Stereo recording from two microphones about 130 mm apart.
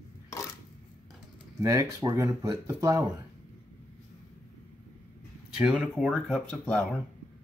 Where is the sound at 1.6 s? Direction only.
25° right (ahead or behind).